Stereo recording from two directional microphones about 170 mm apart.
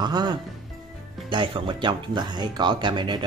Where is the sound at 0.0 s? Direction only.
25° right (ahead or behind).